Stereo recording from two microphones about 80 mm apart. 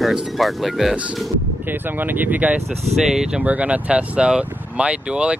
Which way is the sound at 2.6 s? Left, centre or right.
Centre.